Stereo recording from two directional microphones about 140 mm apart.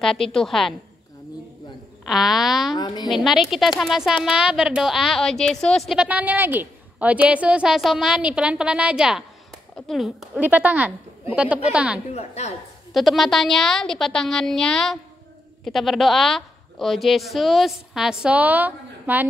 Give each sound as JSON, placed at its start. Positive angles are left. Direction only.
{"t": 0.0, "sound": "a woman's voice", "side_deg": 5}
{"t": 2.0, "sound": "a woman's voice", "side_deg": 0}
{"t": 2.7, "sound": "a woman's voice", "side_deg": 30}
{"t": 3.1, "sound": "a woman's voice", "side_deg": 0}
{"t": 10.4, "sound": "a woman's voice", "side_deg": -10}
{"t": 12.1, "sound": "a woman's voice", "side_deg": 50}
{"t": 12.9, "sound": "a woman's voice", "side_deg": 0}